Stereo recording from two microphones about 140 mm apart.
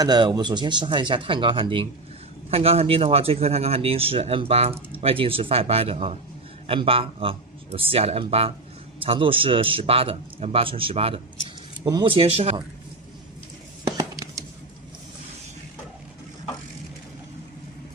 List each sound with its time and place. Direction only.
0.0 s a man's voice: 30° right (ahead or behind); by 12.5 s 45° right (ahead or behind)